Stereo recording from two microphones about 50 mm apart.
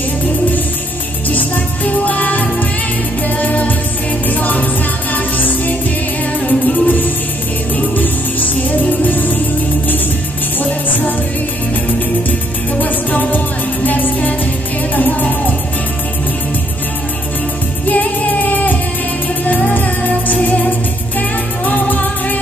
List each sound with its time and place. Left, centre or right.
1.3 s music: left
10.6 s music: left
12.8 s music: left
17.8 s music: left